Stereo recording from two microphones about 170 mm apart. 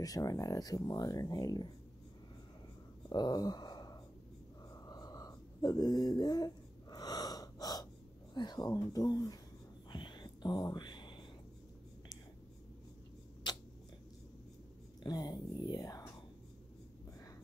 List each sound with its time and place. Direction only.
0.0 s speech: 20° left (ahead or behind)
3.1 s a sound: 25° left (ahead or behind)
8.4 s speech: 25° left (ahead or behind)
9.8 s whispering: 25° left (ahead or behind)
13.5 s a sound: 25° left (ahead or behind)
15.0 s speech: 25° left (ahead or behind)